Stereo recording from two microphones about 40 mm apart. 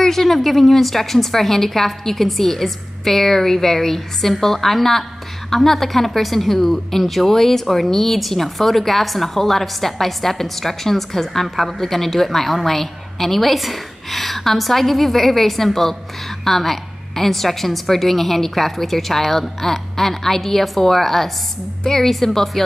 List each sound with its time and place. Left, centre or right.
0.0 s a woman's voice: centre